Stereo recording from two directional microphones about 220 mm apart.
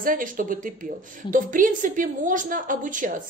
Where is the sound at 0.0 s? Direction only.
40° right (ahead or behind).